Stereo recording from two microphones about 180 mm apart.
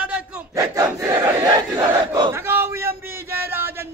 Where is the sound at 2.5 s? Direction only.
15° right (ahead or behind).